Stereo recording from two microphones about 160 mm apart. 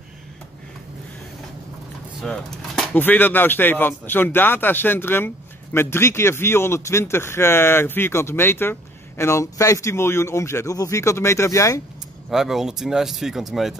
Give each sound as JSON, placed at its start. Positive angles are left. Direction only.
{"t": 2.2, "sound": "speech", "side_deg": 5}
{"t": 12.3, "sound": "speech", "side_deg": 0}